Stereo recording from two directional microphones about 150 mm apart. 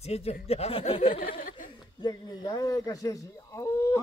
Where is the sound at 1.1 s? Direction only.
70° left (ahead or behind).